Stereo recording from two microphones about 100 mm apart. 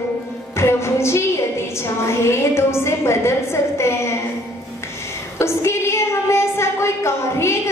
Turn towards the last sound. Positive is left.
turn(degrees=25)  # may be behind; listen again after turning